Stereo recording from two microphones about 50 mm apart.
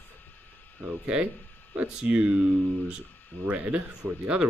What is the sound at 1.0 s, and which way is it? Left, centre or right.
Speech, right.